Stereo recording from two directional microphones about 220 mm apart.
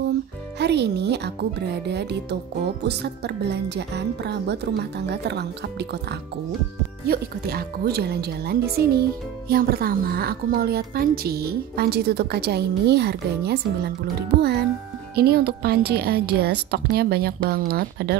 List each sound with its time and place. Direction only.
0.6 s a woman's voice: 50° right (ahead or behind)
7.1 s a woman's voice: 45° right (ahead or behind)